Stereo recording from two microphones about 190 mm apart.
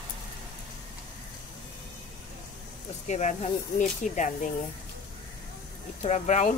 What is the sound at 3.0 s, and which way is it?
Speech, 40° left (ahead or behind).